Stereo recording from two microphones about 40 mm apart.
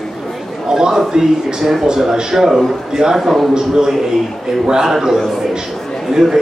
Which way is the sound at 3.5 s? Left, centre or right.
Centre.